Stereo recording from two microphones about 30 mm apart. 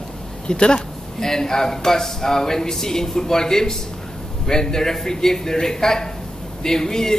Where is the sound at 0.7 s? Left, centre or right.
Centre.